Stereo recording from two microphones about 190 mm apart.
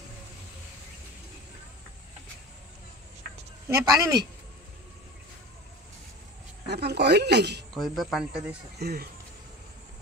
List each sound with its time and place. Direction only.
3.6 s speech: 20° right (ahead or behind)
6.7 s speech: 60° right (ahead or behind)
7.7 s speech: centre (ahead or behind)
8.7 s speech: 55° right (ahead or behind)